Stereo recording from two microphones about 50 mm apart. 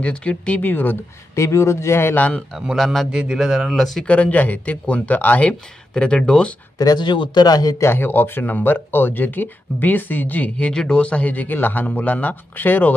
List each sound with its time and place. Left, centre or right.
0.0 s speech: left
0.6 s speech: left
1.3 s a man's voice: left
2.1 s speech: left
2.7 s a man's voice: centre
3.1 s speech: centre
3.7 s speech: centre
4.0 s speech: left
5.5 s speech: centre
7.8 s speech: left
10.7 s speech: centre; by 12.9 s left